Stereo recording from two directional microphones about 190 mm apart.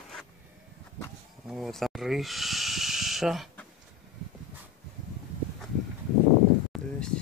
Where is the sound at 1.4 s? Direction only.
Centre (ahead or behind).